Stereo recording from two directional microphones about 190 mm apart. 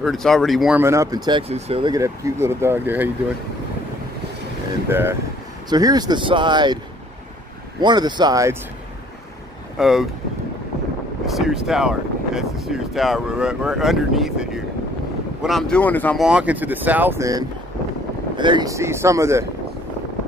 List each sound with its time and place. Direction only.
0.0 s speech: centre (ahead or behind)
4.8 s speech: 10° right (ahead or behind)
7.8 s speech: 20° right (ahead or behind)
9.8 s speech: centre (ahead or behind)
11.2 s speech: centre (ahead or behind)
16.2 s speech: 5° right (ahead or behind)